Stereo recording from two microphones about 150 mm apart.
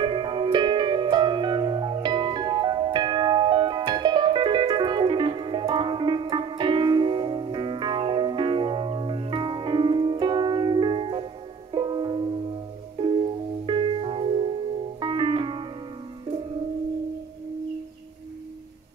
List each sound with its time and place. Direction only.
0.0 s music: 30° right (ahead or behind)